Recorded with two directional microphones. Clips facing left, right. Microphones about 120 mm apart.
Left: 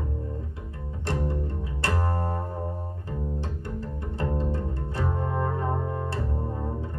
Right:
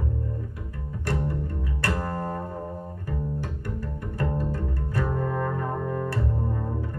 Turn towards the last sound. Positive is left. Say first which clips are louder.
# right 2 dB
turn(degrees=25)  # may be behind; listen again after turning